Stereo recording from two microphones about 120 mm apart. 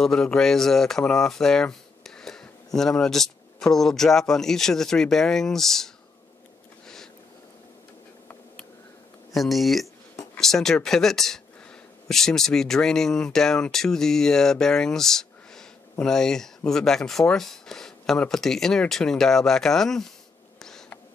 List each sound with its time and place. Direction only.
0.0 s speech: 5° left (ahead or behind)
9.3 s speech: centre (ahead or behind)